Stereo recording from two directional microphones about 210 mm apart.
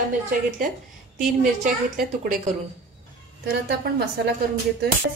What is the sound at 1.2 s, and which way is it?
A woman's voice, 40° right (ahead or behind).